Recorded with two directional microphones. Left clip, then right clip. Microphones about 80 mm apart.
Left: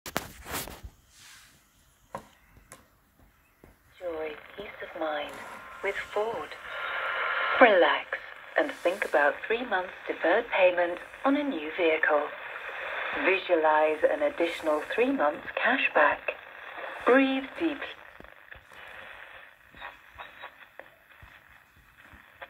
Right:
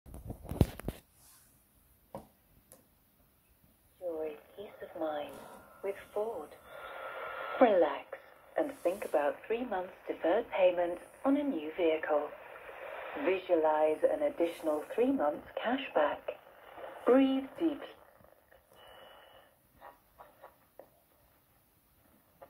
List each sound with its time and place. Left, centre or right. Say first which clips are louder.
4.6 s a sound: left 5 dB; centre
5.3 s speech: left 9 dB; centre
6.1 s speech: left 4 dB; centre
6.6 s speech: left 12 dB; centre
14.6 s speech: left 6 dB; centre
14.9 s speech: left 3 dB; centre
18.8 s train: left 9 dB; right